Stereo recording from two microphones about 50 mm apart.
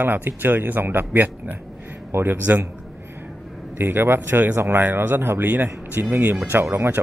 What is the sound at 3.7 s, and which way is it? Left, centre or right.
Speech, right.